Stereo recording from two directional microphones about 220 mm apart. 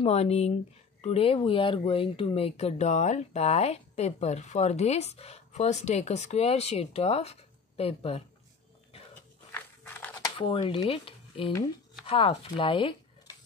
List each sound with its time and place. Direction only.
0.0 s speech: 30° left (ahead or behind)
9.5 s a sound: 10° left (ahead or behind)
10.3 s speech: 25° left (ahead or behind)